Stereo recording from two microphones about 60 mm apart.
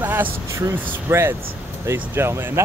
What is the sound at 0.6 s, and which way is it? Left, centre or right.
Speech, right.